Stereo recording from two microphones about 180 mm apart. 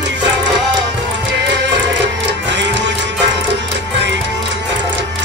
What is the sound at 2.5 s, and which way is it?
Music, 80° right.